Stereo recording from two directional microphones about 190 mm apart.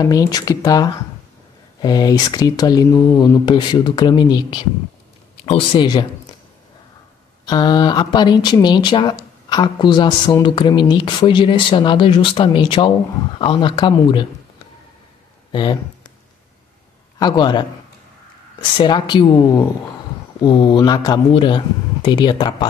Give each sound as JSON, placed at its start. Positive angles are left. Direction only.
{"t": 0.0, "sound": "speech", "side_deg": 20}
{"t": 7.4, "sound": "speech", "side_deg": 20}
{"t": 15.5, "sound": "speech", "side_deg": 25}
{"t": 17.2, "sound": "speech", "side_deg": 25}